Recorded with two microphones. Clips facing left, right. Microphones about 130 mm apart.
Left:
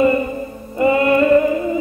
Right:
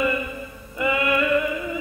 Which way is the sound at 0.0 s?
40° left (ahead or behind).